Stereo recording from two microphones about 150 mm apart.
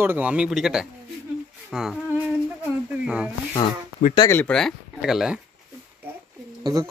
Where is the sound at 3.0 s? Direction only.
5° right (ahead or behind).